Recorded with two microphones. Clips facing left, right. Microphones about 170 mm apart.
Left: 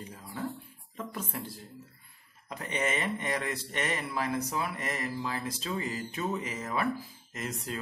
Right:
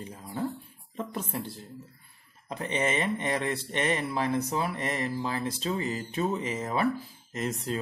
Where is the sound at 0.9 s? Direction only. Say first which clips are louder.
Right 4 dB; 30° right (ahead or behind).